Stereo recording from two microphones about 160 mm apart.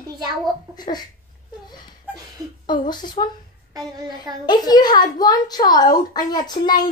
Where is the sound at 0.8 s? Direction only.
25° left (ahead or behind).